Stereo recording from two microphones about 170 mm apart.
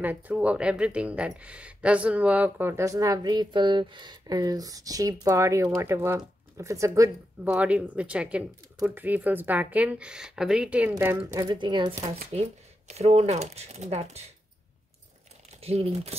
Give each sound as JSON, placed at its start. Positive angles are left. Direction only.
{"t": 0.0, "sound": "speech", "side_deg": -10}
{"t": 11.5, "sound": "speech", "side_deg": -25}
{"t": 12.4, "sound": "speech", "side_deg": -40}
{"t": 15.6, "sound": "speech", "side_deg": -35}